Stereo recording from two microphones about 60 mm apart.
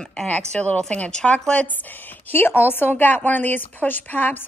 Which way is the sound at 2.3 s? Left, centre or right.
Left.